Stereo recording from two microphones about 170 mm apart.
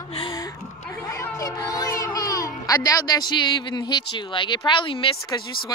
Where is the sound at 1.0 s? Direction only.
20° left (ahead or behind).